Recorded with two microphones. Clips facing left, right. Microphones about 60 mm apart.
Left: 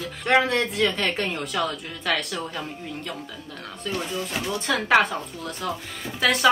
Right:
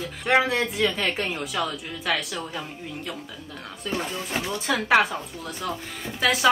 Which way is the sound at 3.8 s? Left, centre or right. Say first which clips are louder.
Even; centre.